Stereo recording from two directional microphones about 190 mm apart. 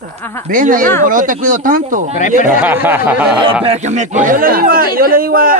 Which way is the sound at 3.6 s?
35° right (ahead or behind).